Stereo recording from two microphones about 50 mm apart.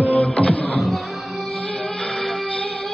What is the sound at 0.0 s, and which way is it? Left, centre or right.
Music, left.